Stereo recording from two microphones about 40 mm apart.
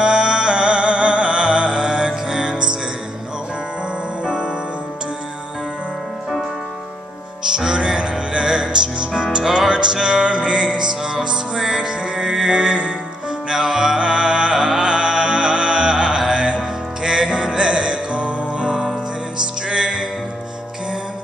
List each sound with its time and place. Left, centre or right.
0.0 s music: right
4.2 s music: right
7.5 s music: right
12.4 s mantra: right
13.5 s music: centre